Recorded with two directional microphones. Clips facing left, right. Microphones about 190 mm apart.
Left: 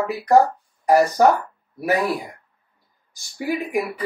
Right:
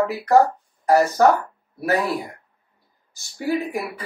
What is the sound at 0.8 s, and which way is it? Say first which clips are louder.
Speech: left 1 dB; 15° left (ahead or behind).